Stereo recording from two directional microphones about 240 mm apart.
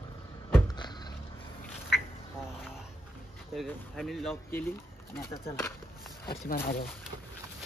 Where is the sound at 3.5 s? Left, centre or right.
Centre.